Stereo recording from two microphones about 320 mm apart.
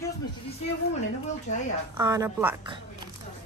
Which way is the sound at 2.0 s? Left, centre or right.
Centre.